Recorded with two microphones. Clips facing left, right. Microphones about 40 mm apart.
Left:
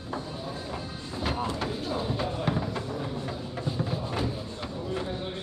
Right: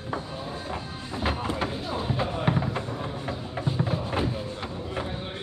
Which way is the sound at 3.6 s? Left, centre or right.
Right.